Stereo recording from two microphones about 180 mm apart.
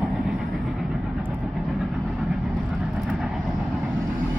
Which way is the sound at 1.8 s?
Centre (ahead or behind).